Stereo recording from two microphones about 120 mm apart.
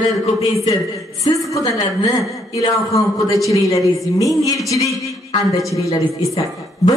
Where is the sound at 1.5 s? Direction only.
25° left (ahead or behind).